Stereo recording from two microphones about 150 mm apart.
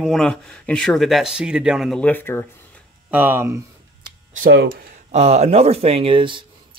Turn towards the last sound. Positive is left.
turn(degrees=-35)  # may be behind; listen again after turning